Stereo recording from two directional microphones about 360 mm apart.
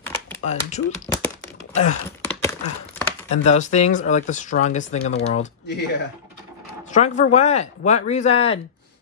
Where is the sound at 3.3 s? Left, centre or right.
Centre.